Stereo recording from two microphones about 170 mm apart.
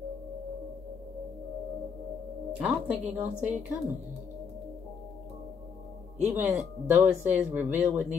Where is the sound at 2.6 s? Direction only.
10° right (ahead or behind).